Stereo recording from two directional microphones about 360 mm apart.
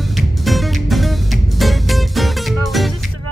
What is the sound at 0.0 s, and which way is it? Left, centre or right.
Music, centre.